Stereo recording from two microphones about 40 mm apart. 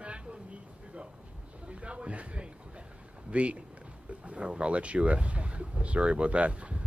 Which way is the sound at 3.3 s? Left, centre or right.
Right.